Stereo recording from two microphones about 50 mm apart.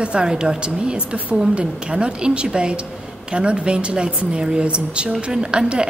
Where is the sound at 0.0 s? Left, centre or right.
Centre.